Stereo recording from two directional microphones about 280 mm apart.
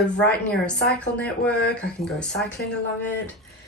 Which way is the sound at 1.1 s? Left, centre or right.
Centre.